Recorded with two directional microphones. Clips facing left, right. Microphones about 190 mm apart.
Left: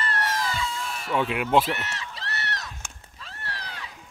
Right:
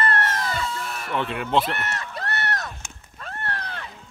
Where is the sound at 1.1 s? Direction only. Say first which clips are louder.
Left 2 dB; 10° left (ahead or behind).